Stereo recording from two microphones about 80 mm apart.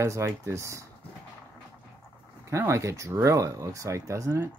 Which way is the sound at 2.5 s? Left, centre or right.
Right.